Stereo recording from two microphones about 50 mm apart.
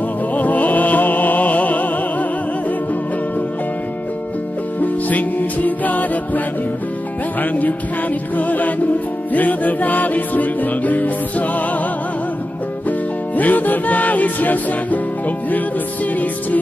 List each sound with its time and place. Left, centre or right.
0.3 s music: left
4.7 s music: left
7.5 s music: left
13.4 s music: left